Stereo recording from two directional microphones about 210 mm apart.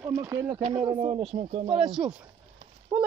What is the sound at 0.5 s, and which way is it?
Speech, 25° right (ahead or behind).